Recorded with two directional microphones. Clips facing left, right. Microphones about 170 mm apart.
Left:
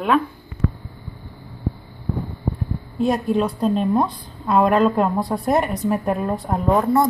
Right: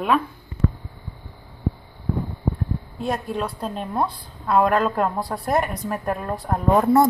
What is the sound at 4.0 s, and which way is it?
Speech, 15° left (ahead or behind).